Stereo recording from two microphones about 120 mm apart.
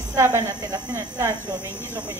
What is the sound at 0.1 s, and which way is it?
Speech, 25° right (ahead or behind).